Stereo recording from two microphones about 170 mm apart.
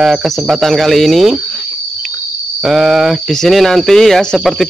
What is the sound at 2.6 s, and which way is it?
Speech, centre (ahead or behind).